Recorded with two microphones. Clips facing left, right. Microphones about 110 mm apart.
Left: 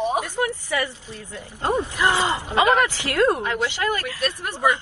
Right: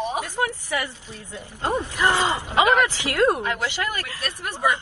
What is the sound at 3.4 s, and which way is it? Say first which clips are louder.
Speech: left 2 dB; 20° left (ahead or behind).